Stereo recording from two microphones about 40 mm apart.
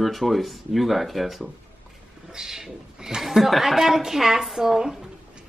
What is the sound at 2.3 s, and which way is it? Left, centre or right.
A woman's voice, centre.